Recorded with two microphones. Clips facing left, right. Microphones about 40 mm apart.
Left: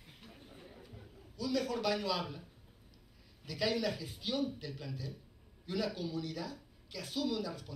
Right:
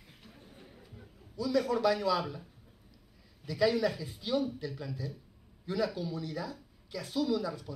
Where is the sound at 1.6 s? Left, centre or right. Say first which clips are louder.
Right 7 dB; right.